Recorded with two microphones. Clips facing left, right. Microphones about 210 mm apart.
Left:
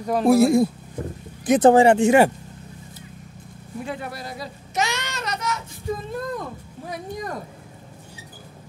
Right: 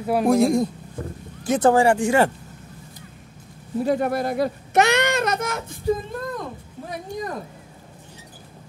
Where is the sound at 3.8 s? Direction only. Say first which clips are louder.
Right 10 dB; 45° right (ahead or behind).